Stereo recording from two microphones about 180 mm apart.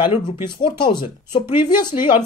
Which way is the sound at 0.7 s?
25° left (ahead or behind).